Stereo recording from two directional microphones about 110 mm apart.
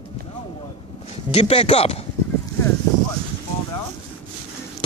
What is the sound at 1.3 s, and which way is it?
Speech, 65° left (ahead or behind).